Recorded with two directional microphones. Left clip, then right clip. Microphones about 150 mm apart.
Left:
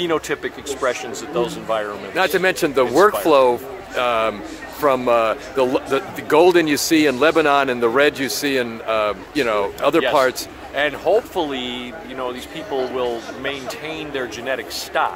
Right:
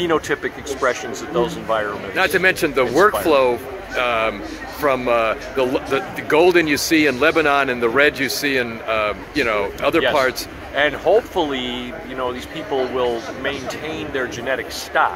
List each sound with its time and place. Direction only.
0.0 s speech: 10° left (ahead or behind)
2.1 s speech: 45° left (ahead or behind)
10.7 s speech: 15° left (ahead or behind)